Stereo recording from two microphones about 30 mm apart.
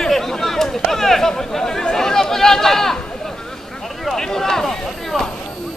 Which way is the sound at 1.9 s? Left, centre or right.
Centre.